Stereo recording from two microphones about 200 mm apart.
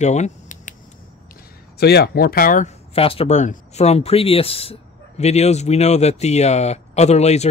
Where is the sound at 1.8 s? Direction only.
55° left (ahead or behind).